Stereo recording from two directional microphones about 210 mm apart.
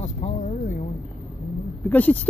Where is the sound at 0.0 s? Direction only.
30° left (ahead or behind).